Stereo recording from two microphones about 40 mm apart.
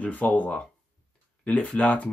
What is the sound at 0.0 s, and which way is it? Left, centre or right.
Speech, left.